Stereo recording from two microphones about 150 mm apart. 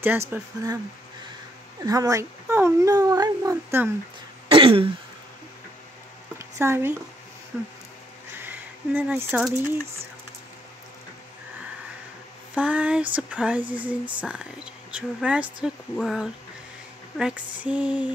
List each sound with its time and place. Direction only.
0.3 s speech: 25° right (ahead or behind)
1.8 s speech: 25° right (ahead or behind)
4.5 s throat clearing: 35° right (ahead or behind)
6.3 s a sound: 15° right (ahead or behind)
7.5 s speech: 10° right (ahead or behind)
8.4 s a sound: 10° right (ahead or behind)
12.5 s speech: 10° right (ahead or behind)